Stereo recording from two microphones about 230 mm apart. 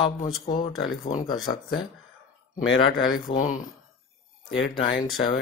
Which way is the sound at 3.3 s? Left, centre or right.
Left.